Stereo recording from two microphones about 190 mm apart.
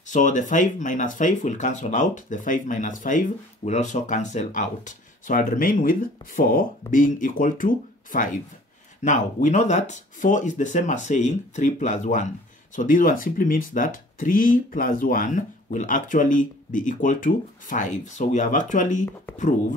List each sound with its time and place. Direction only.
0.0 s speech: 40° left (ahead or behind)